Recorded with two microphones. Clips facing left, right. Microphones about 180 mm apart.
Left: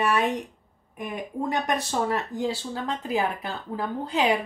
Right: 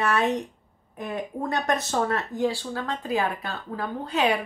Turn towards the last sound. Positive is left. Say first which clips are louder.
# even
turn(degrees=20)  # may be behind; listen again after turning